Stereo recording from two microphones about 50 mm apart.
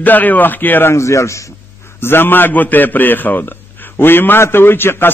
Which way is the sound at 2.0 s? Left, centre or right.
Left.